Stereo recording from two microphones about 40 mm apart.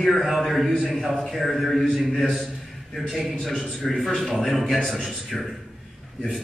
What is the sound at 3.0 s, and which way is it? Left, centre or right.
Speech, centre.